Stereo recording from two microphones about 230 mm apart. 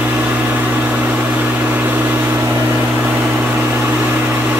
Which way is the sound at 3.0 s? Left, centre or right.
Centre.